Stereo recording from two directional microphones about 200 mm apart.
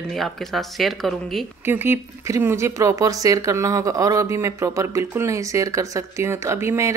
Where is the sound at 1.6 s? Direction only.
10° right (ahead or behind).